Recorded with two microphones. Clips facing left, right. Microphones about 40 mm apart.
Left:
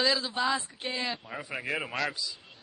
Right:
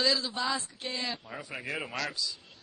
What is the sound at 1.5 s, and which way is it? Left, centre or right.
Speech, centre.